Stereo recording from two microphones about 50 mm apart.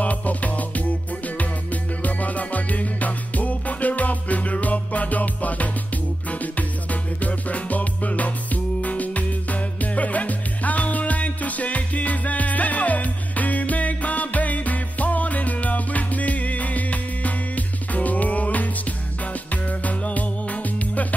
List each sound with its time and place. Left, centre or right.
0.0 s music: left